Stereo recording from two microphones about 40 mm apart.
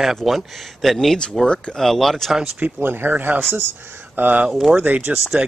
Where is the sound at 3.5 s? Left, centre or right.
Right.